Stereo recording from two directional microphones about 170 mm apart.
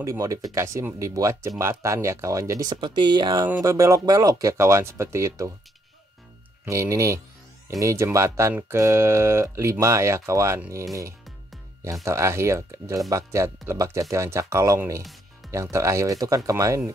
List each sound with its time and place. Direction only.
0.0 s speech: 20° right (ahead or behind)
6.6 s speech: 15° right (ahead or behind)